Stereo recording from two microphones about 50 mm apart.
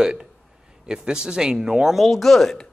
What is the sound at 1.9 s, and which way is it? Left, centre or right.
Speech, centre.